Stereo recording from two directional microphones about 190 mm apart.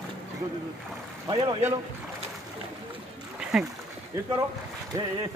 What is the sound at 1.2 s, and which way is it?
Speech, 20° right (ahead or behind).